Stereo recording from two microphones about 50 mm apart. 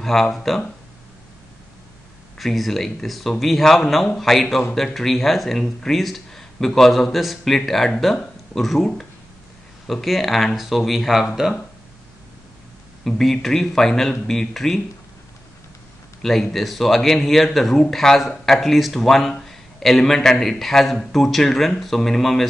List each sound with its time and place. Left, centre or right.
0.0 s speech: centre
2.3 s speech: centre
13.0 s speech: centre
16.2 s a man's voice: centre